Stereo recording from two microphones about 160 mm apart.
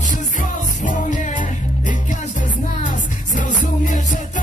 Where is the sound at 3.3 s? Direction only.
55° left (ahead or behind).